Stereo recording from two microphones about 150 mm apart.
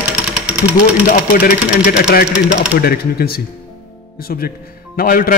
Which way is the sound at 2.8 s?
90° left.